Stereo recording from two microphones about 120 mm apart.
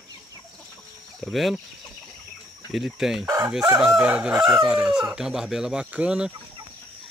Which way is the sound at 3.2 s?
25° right (ahead or behind).